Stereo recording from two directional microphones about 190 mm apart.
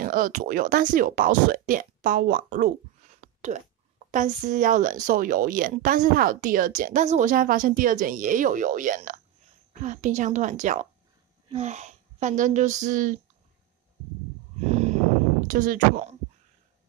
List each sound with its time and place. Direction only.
0.0 s speech: 45° right (ahead or behind)
4.1 s a woman's voice: 45° right (ahead or behind)
14.7 s a sound: 35° right (ahead or behind)
15.4 s speech: 45° right (ahead or behind)